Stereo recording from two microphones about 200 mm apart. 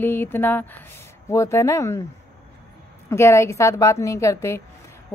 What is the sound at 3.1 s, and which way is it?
Speech, 15° left (ahead or behind).